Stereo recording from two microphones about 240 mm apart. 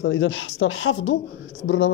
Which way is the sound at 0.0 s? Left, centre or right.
Left.